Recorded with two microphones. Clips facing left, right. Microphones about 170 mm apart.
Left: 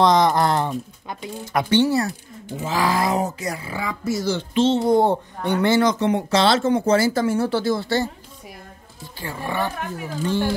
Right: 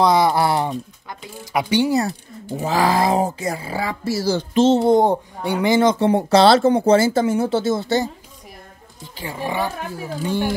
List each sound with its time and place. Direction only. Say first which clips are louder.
0.0 s speech: right 1 dB; 5° right (ahead or behind)
2.5 s speech: right 3 dB; 35° right (ahead or behind)
4.8 s speech: right 2 dB; 15° right (ahead or behind)
5.8 s speech: right 3 dB; 25° right (ahead or behind)
9.2 s speech: right 2 dB; 15° right (ahead or behind)